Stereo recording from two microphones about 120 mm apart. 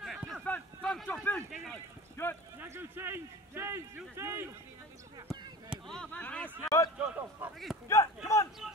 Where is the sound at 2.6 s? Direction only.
20° right (ahead or behind).